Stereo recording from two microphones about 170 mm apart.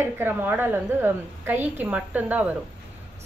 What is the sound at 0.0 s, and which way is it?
A woman's voice, 15° right (ahead or behind).